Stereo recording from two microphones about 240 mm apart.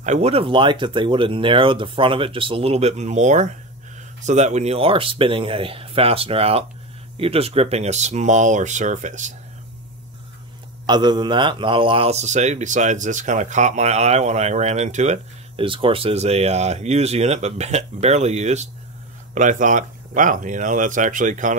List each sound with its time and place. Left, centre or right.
0.0 s a man's voice: right
10.9 s a man's voice: centre